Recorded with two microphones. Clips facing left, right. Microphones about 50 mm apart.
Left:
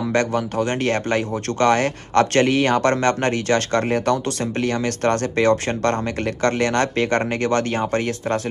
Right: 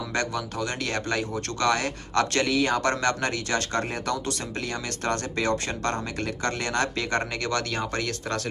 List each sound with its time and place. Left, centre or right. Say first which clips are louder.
0.1 s speech: left 8 dB; left